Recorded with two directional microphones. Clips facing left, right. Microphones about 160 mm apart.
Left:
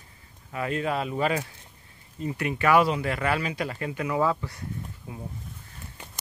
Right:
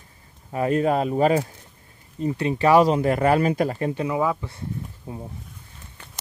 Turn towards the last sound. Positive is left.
turn(degrees=-35)  # may be behind; listen again after turning